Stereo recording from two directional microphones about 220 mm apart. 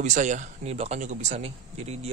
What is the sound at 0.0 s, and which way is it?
Speech, 35° right (ahead or behind).